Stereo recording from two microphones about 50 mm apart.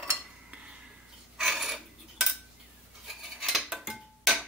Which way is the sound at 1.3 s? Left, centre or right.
Centre.